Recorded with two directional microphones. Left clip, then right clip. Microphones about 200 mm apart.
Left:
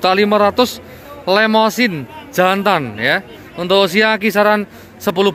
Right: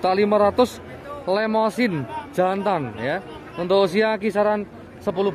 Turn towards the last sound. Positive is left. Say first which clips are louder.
# left 7 dB
turn(degrees=5)  # may be behind; listen again after turning